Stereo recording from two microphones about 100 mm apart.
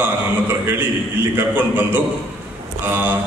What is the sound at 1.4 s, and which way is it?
A man's voice, 20° right (ahead or behind).